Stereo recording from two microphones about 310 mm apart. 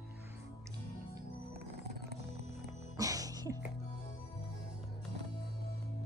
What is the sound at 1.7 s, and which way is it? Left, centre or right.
Music, right.